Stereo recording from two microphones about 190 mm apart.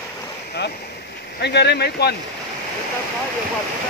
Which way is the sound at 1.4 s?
60° left (ahead or behind).